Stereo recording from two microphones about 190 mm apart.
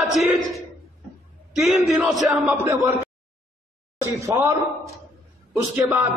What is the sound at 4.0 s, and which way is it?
Speech, 15° right (ahead or behind).